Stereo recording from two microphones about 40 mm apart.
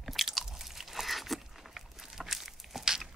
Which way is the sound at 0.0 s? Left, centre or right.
Centre.